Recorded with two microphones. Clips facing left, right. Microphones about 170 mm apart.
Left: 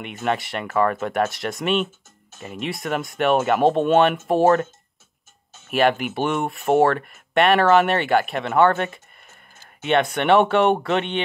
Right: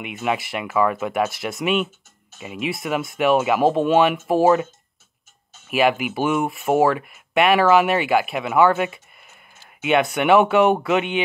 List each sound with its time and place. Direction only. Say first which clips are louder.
0.0 s speech: even; 5° right (ahead or behind)
5.7 s speech: even; 5° right (ahead or behind)